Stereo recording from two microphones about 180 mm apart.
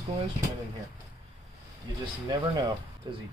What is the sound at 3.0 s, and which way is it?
Speech, 25° right (ahead or behind).